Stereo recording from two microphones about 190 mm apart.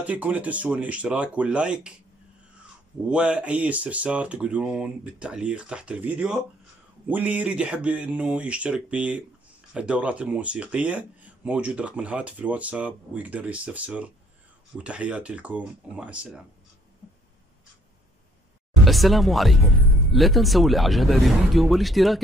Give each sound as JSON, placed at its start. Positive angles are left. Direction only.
{"t": 0.0, "sound": "speech", "side_deg": -5}
{"t": 3.1, "sound": "speech", "side_deg": -5}
{"t": 18.9, "sound": "speech", "side_deg": 0}